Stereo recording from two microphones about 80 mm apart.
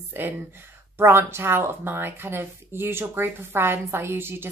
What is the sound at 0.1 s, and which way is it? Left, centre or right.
Speech, right.